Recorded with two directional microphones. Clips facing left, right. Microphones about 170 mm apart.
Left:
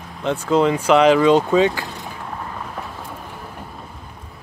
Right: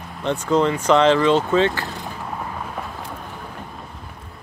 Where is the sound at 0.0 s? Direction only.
Centre (ahead or behind).